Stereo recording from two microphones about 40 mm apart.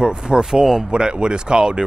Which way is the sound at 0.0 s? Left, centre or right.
Right.